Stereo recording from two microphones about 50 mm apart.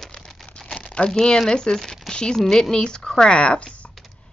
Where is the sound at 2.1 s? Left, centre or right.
Centre.